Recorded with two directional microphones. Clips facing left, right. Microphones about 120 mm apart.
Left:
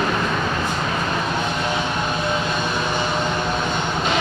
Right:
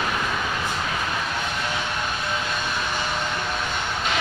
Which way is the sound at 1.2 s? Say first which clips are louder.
Left 5 dB; 25° left (ahead or behind).